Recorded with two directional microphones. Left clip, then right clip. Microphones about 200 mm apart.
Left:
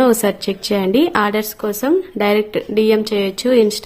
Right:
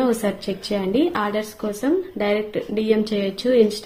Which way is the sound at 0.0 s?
30° left (ahead or behind).